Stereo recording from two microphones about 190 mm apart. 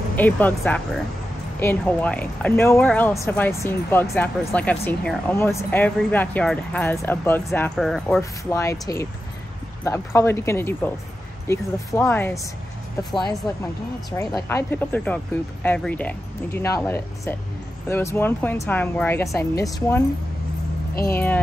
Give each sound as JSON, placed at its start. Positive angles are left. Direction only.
{"t": 0.1, "sound": "speech", "side_deg": 10}
{"t": 8.2, "sound": "speech", "side_deg": 15}
{"t": 14.1, "sound": "speech", "side_deg": 15}
{"t": 20.9, "sound": "speech", "side_deg": 55}